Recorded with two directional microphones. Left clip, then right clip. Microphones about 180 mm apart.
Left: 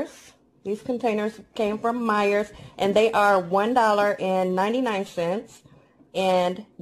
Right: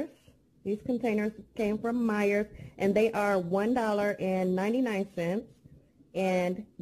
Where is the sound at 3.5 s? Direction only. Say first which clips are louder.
Left 9 dB; centre (ahead or behind).